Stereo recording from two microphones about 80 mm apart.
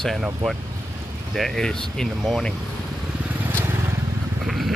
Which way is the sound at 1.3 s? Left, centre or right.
Centre.